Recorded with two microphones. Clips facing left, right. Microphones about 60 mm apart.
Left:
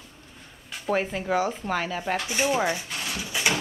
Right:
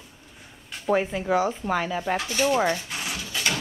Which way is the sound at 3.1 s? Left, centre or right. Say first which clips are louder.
Left 3 dB; centre.